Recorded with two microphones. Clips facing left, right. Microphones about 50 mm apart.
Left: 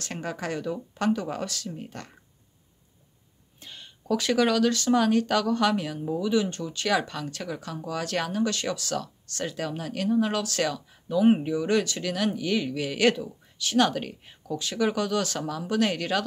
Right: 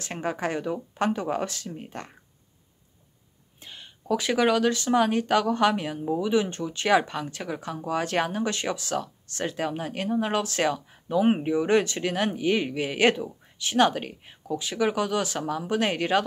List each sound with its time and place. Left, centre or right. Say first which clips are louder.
0.0 s speech: right 4 dB; right
3.5 s speech: even; centre